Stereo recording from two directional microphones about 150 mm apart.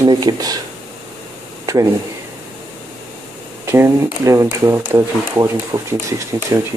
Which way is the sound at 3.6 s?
20° right (ahead or behind).